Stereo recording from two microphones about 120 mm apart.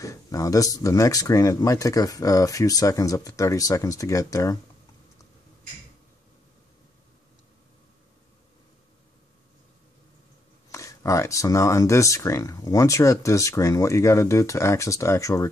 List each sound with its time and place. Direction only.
0.0 s speech: 30° left (ahead or behind)
10.7 s speech: 25° left (ahead or behind)